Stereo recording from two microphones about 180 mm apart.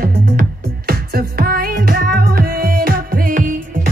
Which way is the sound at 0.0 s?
55° right (ahead or behind).